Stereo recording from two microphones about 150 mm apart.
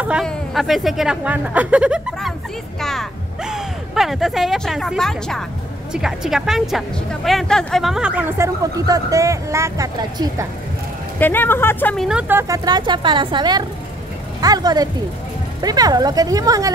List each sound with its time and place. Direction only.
0.2 s a woman's voice: centre (ahead or behind)
8.7 s speech: 25° right (ahead or behind)
11.1 s speech: 15° left (ahead or behind)
12.1 s speech: 10° right (ahead or behind)